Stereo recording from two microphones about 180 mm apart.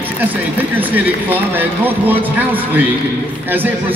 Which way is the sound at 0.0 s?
10° right (ahead or behind).